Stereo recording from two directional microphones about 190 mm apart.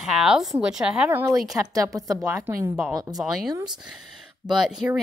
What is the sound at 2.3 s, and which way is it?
Speech, 15° right (ahead or behind).